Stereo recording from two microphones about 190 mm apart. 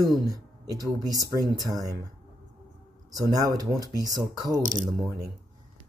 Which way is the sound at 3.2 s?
20° right (ahead or behind).